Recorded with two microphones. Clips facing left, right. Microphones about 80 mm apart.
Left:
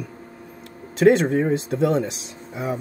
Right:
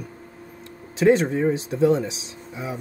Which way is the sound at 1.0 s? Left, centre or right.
Left.